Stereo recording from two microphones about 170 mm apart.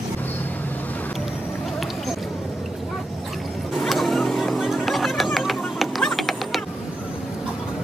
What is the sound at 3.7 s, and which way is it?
Music, centre (ahead or behind).